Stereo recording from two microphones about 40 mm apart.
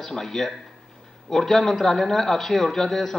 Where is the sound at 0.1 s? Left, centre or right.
Centre.